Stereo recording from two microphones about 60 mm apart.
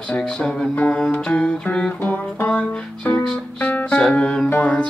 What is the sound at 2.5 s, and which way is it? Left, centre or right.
Music, centre.